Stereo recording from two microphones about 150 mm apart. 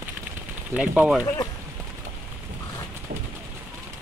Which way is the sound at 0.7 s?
5° right (ahead or behind).